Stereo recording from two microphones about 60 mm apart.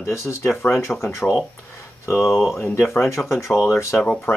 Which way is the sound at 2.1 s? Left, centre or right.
Centre.